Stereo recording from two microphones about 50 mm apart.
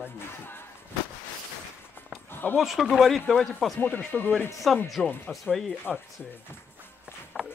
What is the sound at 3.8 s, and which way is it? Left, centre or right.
Speech, left.